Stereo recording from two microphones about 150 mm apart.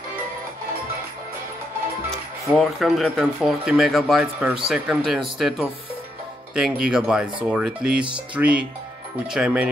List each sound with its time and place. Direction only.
2.4 s speech: centre (ahead or behind)
6.5 s speech: 5° right (ahead or behind)